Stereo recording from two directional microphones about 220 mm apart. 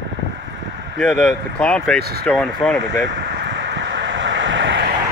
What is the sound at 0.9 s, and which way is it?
Speech, centre (ahead or behind).